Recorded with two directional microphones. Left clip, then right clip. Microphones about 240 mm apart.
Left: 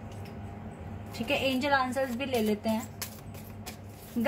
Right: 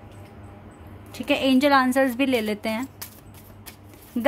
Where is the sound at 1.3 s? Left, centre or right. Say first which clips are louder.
Right 8 dB; right.